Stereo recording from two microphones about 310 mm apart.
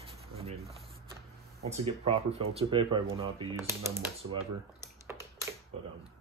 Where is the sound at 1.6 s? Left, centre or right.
Centre.